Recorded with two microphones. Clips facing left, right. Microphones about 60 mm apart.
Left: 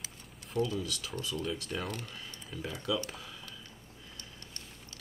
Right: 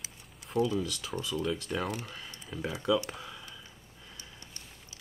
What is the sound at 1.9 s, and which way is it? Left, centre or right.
Speech, centre.